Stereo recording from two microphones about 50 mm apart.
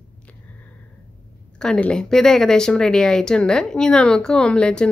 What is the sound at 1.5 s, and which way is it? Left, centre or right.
A woman's voice, centre.